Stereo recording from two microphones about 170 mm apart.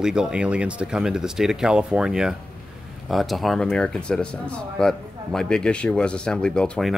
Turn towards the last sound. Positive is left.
turn(degrees=5)  # may be behind; listen again after turning